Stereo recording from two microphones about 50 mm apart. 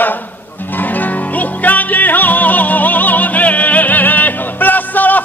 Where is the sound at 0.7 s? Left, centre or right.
Left.